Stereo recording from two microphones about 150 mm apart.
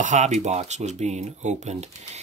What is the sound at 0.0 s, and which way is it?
Speech, 50° right (ahead or behind).